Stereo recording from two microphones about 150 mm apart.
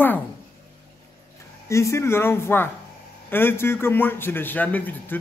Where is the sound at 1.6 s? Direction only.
20° left (ahead or behind).